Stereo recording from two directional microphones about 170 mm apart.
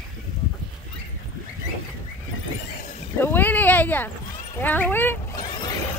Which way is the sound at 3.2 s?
10° left (ahead or behind).